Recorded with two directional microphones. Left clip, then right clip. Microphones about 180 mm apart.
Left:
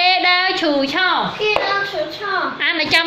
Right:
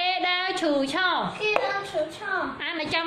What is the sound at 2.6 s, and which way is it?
Speech, 5° right (ahead or behind).